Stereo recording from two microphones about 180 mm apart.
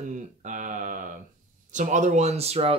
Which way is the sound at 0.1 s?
45° right (ahead or behind).